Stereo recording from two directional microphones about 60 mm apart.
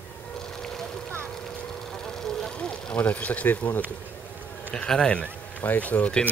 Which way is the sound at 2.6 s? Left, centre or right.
Centre.